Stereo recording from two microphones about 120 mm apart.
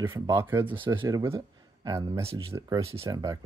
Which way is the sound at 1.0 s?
20° right (ahead or behind).